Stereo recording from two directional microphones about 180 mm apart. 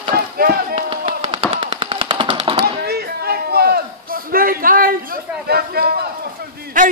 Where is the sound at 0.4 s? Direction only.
55° right (ahead or behind).